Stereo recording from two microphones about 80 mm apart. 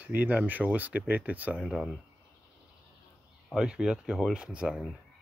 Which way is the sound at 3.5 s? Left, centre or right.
Centre.